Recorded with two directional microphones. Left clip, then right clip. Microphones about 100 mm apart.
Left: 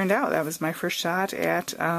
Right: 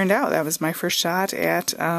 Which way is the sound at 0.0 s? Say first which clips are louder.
Right 3 dB; 30° right (ahead or behind).